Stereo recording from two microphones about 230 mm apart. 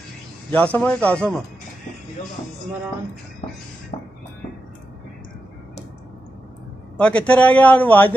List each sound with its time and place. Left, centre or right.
0.5 s a man's voice: centre
3.9 s music: left
7.0 s a man's voice: centre